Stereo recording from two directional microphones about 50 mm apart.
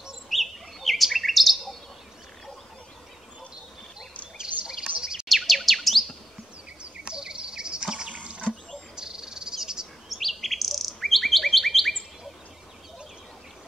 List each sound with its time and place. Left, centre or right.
0.3 s chirp: centre
4.6 s a sound: centre
5.3 s chirp: centre
6.8 s insect: centre
8.1 s a sound: right
8.9 s cricket: centre
10.0 s bird: centre